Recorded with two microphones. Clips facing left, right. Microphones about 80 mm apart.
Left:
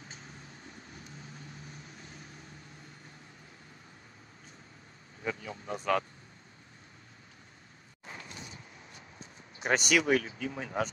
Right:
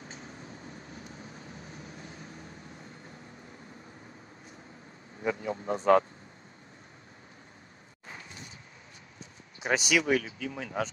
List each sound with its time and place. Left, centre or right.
0.1 s vehicle: right
5.2 s a man's voice: right
5.7 s speech: right
9.6 s speech: centre